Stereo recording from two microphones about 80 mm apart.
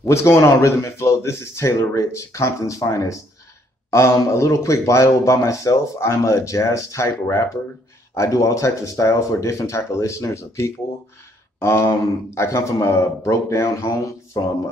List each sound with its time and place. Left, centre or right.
0.0 s speech: left
4.3 s speech: left